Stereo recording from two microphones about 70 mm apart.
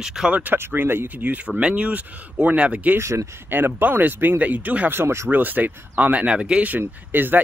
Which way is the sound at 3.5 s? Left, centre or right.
Right.